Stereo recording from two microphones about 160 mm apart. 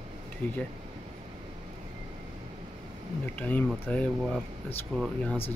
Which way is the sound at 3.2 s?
10° left (ahead or behind).